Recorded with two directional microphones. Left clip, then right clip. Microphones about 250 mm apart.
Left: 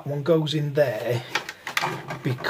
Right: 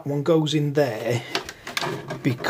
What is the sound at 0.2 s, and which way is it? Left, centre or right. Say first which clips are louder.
Speech: right 1 dB; right.